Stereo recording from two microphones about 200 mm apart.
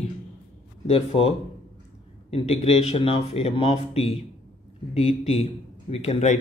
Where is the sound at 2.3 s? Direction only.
30° left (ahead or behind).